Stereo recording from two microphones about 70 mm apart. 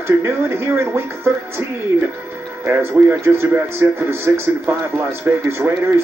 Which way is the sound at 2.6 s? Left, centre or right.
Right.